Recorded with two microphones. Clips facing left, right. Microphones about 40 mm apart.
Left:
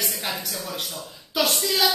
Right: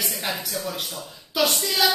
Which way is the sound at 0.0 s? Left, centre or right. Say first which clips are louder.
Right 1 dB; centre.